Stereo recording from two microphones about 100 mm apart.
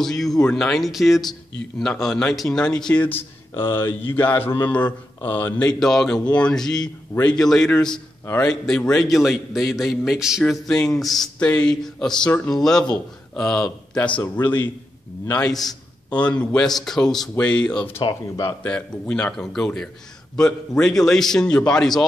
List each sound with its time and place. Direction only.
0.0 s a man's voice: 5° left (ahead or behind); by 5.7 s 20° left (ahead or behind)
5.8 s a man's voice: 5° left (ahead or behind)
10.5 s a man's voice: 5° left (ahead or behind)
11.3 s speech: 15° left (ahead or behind)
13.3 s a man's voice: 5° left (ahead or behind)
15.3 s a man's voice: 5° left (ahead or behind)